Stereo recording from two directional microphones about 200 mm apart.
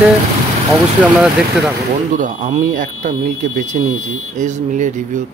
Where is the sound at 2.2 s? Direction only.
40° right (ahead or behind).